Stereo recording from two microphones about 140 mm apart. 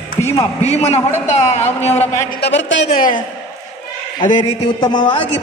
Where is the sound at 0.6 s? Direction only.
50° left (ahead or behind).